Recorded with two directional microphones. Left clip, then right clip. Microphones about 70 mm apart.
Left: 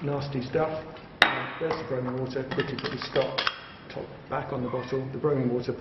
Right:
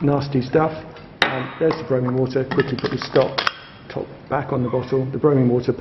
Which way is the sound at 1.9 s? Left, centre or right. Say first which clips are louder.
Right 10 dB; right.